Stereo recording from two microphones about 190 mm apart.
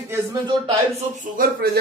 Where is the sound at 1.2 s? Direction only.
50° right (ahead or behind).